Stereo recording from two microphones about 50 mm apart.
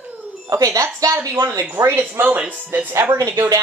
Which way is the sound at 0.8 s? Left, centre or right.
Right.